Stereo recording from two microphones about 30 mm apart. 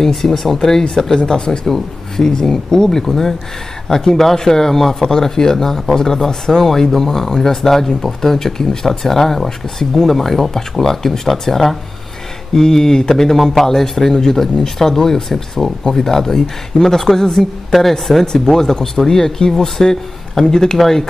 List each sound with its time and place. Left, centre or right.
0.0 s speech: centre
1.1 s speech: left
1.7 s speech: centre
3.1 s speech: centre
12.5 s speech: centre
17.6 s speech: centre